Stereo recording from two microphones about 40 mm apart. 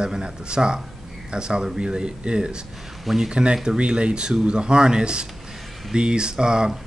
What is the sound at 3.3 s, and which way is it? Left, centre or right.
Speech, right.